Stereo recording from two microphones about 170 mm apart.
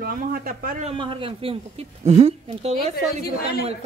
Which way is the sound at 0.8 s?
30° right (ahead or behind).